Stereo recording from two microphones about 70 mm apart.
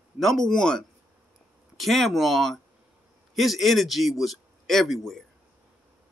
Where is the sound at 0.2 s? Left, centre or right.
Centre.